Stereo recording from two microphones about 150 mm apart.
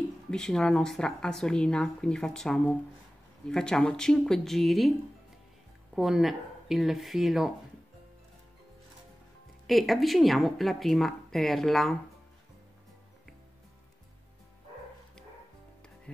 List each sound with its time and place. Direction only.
0.3 s a woman's voice: 5° left (ahead or behind)
5.9 s a woman's voice: 5° right (ahead or behind)
9.7 s a woman's voice: centre (ahead or behind)